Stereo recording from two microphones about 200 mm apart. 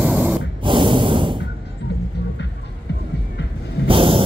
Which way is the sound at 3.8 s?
25° right (ahead or behind).